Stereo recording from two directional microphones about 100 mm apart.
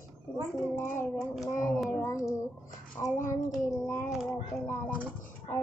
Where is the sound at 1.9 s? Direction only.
30° left (ahead or behind).